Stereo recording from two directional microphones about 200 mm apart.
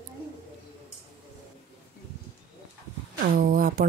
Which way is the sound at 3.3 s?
45° right (ahead or behind).